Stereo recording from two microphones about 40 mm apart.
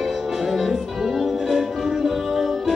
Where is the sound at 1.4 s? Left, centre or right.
Centre.